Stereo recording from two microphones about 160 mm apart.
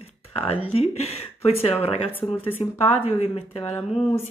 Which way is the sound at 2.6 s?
35° left (ahead or behind).